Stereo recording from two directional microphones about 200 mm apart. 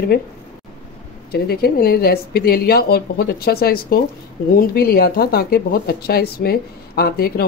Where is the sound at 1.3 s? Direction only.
50° left (ahead or behind).